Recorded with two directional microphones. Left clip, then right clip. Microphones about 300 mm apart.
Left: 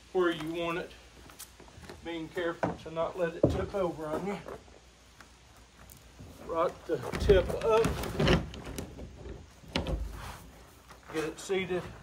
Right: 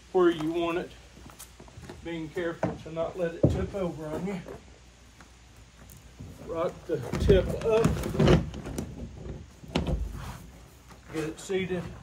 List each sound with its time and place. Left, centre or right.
0.1 s speech: centre
1.9 s speech: centre
6.5 s speech: centre
7.8 s speech: centre
9.7 s a sound: centre
10.1 s a sound: centre
11.3 s speech: centre